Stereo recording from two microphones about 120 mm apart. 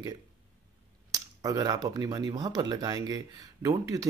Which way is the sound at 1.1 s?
30° right (ahead or behind).